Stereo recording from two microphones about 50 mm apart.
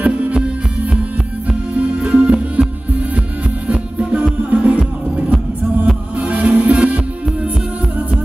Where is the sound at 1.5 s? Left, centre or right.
Right.